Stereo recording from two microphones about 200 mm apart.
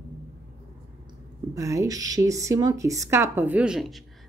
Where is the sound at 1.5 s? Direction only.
15° right (ahead or behind); by 4.1 s centre (ahead or behind).